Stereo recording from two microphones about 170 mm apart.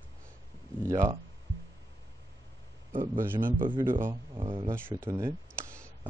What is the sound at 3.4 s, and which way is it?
Speech, 55° right (ahead or behind).